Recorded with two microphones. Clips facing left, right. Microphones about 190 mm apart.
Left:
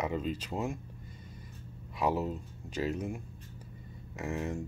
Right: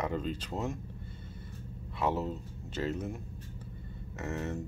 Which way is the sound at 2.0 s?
10° left (ahead or behind).